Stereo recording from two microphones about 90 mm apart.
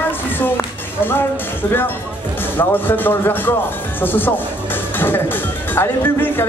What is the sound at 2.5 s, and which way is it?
Speech, 20° left (ahead or behind).